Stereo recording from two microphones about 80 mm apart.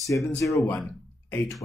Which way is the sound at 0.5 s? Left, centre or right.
Left.